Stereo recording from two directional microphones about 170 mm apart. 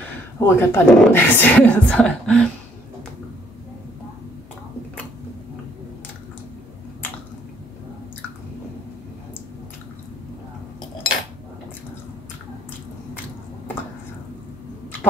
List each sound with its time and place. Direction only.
0.4 s speech: 15° left (ahead or behind)